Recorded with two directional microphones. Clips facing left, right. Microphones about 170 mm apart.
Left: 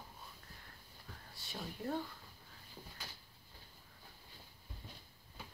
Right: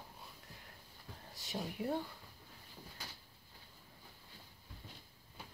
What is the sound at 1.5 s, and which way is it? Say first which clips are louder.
Speech: right 3 dB; 15° right (ahead or behind).